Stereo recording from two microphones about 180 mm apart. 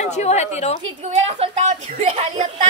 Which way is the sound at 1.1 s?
35° right (ahead or behind).